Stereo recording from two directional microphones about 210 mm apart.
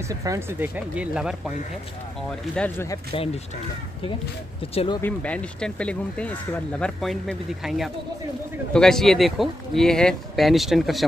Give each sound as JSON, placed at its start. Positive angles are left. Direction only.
{"t": 0.1, "sound": "speech", "side_deg": -15}
{"t": 2.5, "sound": "speech", "side_deg": 10}
{"t": 4.6, "sound": "speech", "side_deg": 25}
{"t": 5.0, "sound": "speech", "side_deg": 5}